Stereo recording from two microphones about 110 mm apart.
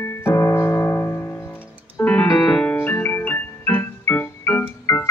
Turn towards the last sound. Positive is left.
turn(degrees=20)  # may be behind; listen again after turning